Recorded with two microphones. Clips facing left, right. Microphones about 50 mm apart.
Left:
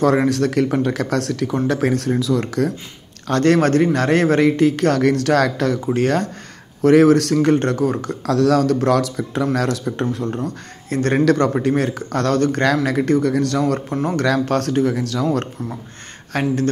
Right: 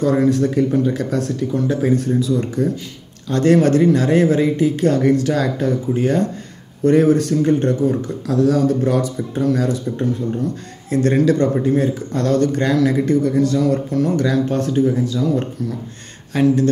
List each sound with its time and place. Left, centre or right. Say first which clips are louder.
0.3 s speech: right 1 dB; left
3.3 s a man's voice: right 1 dB; left
6.8 s speech: left 2 dB; left
9.6 s a man's voice: right 1 dB; left
11.2 s a man's voice: even; left
14.1 s speech: even; left
16.3 s speech: right 5 dB; left